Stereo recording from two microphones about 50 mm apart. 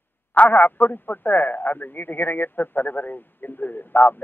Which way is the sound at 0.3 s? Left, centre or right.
Left.